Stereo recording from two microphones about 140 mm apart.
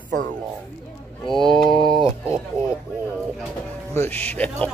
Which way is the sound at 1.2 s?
5° left (ahead or behind).